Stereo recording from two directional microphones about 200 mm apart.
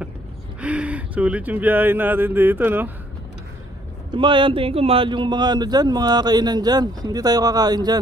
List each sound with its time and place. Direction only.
0.6 s speech: 5° right (ahead or behind)
4.1 s a man's voice: 25° right (ahead or behind)